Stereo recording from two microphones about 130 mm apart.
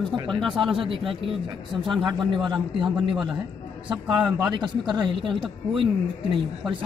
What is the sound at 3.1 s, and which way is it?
Speech, centre (ahead or behind).